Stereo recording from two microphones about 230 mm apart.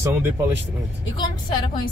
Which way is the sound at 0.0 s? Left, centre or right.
Centre.